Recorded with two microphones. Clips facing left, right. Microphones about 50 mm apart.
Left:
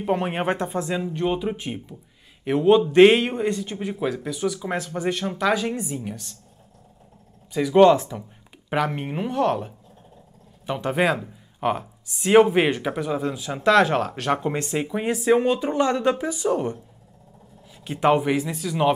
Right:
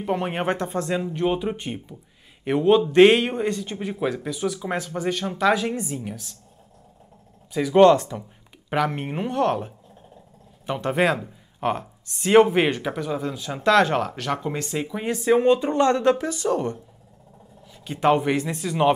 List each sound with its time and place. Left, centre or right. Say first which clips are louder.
0.0 s speech: left 1 dB; centre
7.5 s speech: even; centre
14.1 s speech: left 3 dB; left
18.0 s speech: even; centre